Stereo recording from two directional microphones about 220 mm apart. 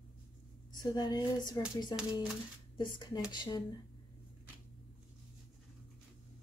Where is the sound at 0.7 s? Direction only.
20° left (ahead or behind).